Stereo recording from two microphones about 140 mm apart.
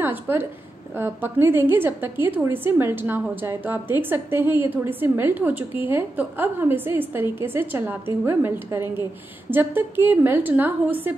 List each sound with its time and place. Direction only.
0.0 s a woman's voice: 15° right (ahead or behind)